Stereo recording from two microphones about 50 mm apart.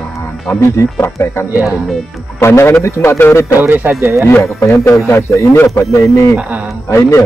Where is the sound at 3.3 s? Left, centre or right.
Left.